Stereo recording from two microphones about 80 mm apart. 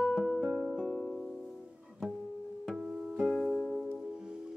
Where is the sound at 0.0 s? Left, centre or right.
Centre.